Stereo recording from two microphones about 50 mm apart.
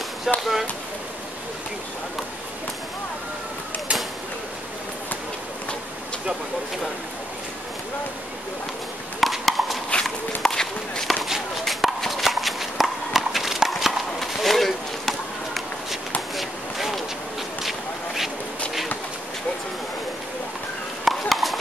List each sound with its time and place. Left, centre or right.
0.3 s speech: centre
9.2 s a sound: centre
10.0 s walk: centre
11.1 s walk: centre
17.6 s a sound: centre
21.0 s horse: centre